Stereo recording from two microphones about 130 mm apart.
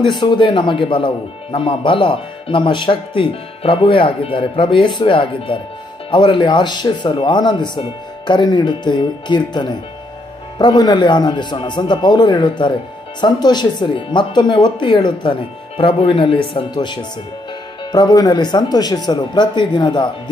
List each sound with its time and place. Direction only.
0.0 s speech: 35° left (ahead or behind)